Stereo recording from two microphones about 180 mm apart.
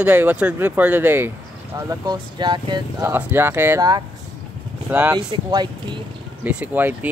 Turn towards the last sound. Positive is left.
turn(degrees=-10)  # may be behind; listen again after turning